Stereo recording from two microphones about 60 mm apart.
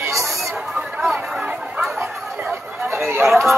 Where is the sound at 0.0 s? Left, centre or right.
Right.